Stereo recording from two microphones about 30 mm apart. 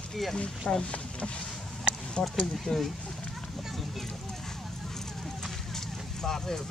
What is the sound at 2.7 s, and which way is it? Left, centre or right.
Speech, left.